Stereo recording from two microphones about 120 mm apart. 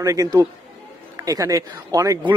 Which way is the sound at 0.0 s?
30° right (ahead or behind).